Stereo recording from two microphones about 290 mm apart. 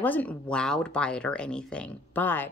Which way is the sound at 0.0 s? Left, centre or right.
Centre.